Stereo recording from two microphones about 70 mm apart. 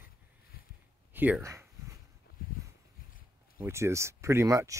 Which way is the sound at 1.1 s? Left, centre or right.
Right.